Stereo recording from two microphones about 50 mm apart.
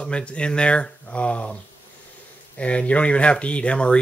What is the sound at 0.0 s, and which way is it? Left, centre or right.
Speech, left.